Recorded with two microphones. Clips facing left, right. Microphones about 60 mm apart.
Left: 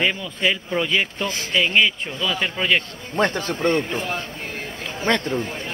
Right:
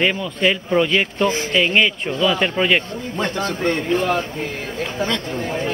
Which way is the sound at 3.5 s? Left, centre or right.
Left.